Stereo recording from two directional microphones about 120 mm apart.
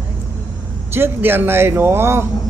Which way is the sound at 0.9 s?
20° right (ahead or behind).